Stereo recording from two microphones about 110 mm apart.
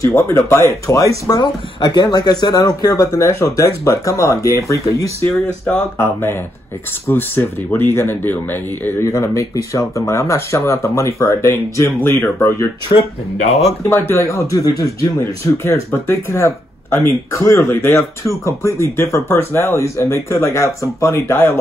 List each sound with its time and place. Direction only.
0.2 s speech: 25° left (ahead or behind)
1.4 s speech: 40° left (ahead or behind)
7.1 s speech: 20° left (ahead or behind)
12.9 s speech: 65° left (ahead or behind)
13.8 s speech: 25° left (ahead or behind)